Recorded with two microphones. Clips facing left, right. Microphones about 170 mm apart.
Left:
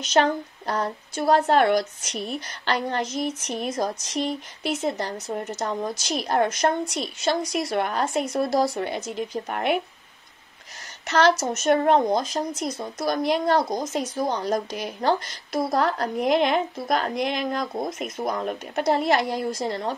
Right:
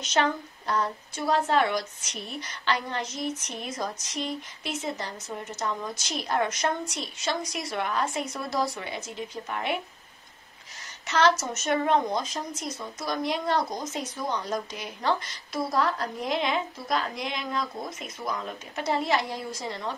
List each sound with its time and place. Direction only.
0.1 s speech: 40° left (ahead or behind)
1.3 s a woman's voice: 60° left (ahead or behind); by 4.3 s 45° left (ahead or behind)
4.6 s a woman's voice: 55° left (ahead or behind)
5.6 s a woman's voice: 40° left (ahead or behind)
6.9 s a woman's voice: 60° left (ahead or behind)
11.2 s a woman's voice: 35° left (ahead or behind)
11.6 s speech: 50° left (ahead or behind)
12.2 s a woman's voice: 65° left (ahead or behind)
12.7 s a woman's voice: 35° left (ahead or behind)
13.1 s a woman's voice: 65° left (ahead or behind)
13.5 s a woman's voice: 40° left (ahead or behind)